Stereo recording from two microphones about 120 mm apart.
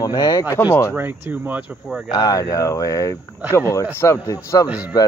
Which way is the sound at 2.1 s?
30° left (ahead or behind).